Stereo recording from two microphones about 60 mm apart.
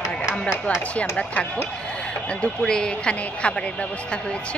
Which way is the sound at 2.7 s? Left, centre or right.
Centre.